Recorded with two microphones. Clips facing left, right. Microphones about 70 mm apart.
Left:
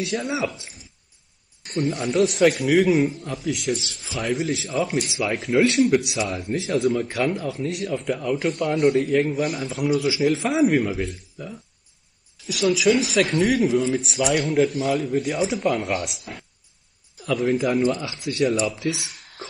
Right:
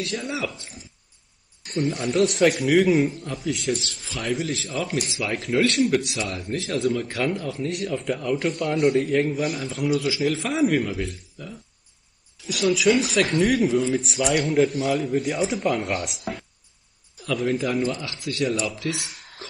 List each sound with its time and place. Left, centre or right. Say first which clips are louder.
0.0 s speech: left 3 dB; centre
1.8 s speech: left 1 dB; centre
5.9 s a man's voice: left 3 dB; centre
11.4 s a man's voice: left 4 dB; centre
12.4 s speech: left 1 dB; centre
18.0 s speech: left 2 dB; centre
18.4 s speech: left 4 dB; centre